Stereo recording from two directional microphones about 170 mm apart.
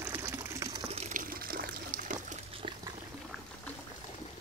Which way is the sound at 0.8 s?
35° right (ahead or behind).